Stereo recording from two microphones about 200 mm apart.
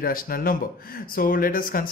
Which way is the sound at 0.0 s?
45° left (ahead or behind).